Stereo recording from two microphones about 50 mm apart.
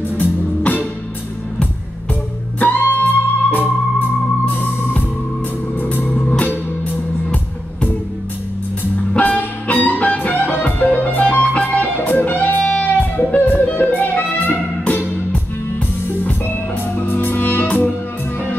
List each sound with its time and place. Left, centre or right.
0.2 s music: left
2.6 s music: left
9.2 s music: left
12.7 s music: left